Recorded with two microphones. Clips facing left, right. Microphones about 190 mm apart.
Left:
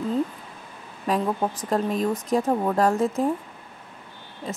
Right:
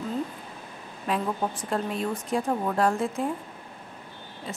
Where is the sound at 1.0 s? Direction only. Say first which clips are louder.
Left 4 dB; 40° left (ahead or behind).